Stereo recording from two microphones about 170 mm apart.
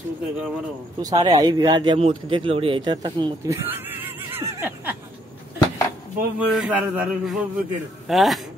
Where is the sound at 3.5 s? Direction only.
10° right (ahead or behind).